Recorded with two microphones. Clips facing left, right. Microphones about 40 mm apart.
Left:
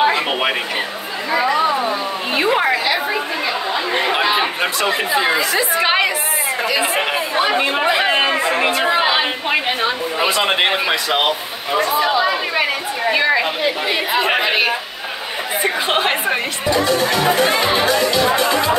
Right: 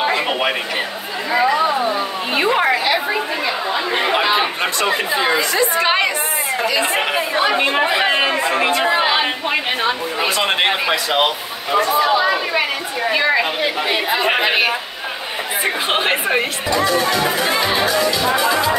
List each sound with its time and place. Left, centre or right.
0.0 s a sound: centre
1.3 s a woman's voice: centre
15.6 s a woman's voice: centre
17.1 s music: left